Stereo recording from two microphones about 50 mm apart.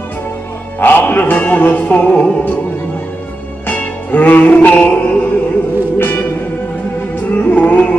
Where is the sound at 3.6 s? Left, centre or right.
Left.